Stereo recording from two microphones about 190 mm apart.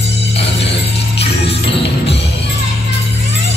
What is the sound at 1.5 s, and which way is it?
Music, 30° left (ahead or behind).